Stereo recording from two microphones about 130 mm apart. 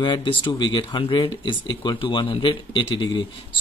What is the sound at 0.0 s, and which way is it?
Speech, 40° left (ahead or behind).